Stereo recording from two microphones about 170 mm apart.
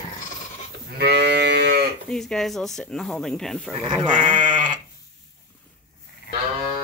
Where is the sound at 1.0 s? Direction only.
80° right.